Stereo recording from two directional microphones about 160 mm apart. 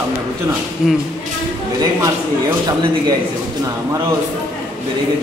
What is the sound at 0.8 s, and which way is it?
Speech, 5° right (ahead or behind).